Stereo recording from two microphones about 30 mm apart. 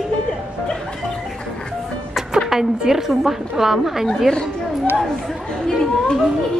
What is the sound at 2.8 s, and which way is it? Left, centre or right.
A woman's voice, centre.